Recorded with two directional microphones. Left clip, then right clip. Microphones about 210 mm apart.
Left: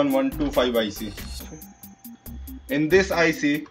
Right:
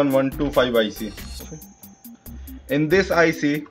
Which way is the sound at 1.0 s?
Centre (ahead or behind).